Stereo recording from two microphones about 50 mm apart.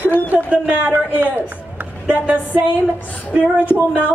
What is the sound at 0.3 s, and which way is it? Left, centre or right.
A man's voice, right.